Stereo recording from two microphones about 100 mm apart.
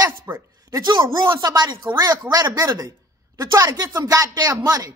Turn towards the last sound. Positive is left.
turn(degrees=-35)  # may be behind; listen again after turning